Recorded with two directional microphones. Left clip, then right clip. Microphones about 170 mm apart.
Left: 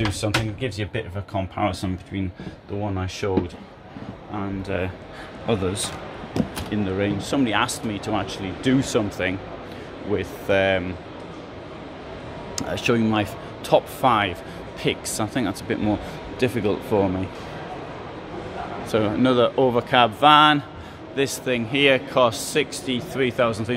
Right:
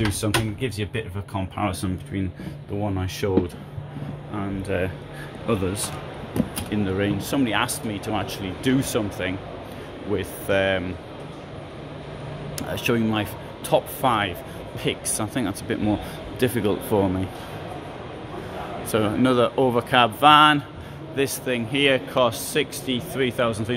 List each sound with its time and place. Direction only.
0.2 s speech: 10° left (ahead or behind)
4.4 s speech: 10° left (ahead or behind)
6.7 s speech: centre (ahead or behind)
12.5 s speech: 20° left (ahead or behind)
15.8 s speech: 5° right (ahead or behind)
18.9 s speech: centre (ahead or behind)